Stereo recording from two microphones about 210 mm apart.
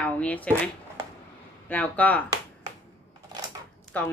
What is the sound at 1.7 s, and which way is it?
Speech, 5° left (ahead or behind).